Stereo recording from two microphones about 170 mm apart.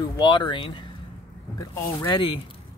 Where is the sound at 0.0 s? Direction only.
25° left (ahead or behind).